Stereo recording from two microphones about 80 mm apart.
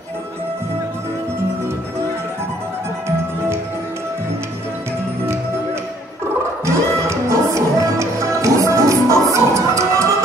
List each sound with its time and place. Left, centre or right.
6.6 s music: right